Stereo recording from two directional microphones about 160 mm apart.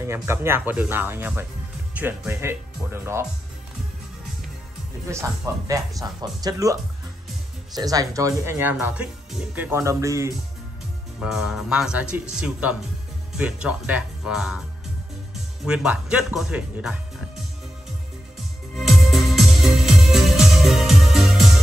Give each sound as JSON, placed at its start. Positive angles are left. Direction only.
{"t": 0.0, "sound": "speech", "side_deg": -15}
{"t": 5.0, "sound": "speech", "side_deg": -20}
{"t": 11.1, "sound": "speech", "side_deg": -5}
{"t": 15.6, "sound": "speech", "side_deg": -5}
{"t": 18.8, "sound": "music", "side_deg": 0}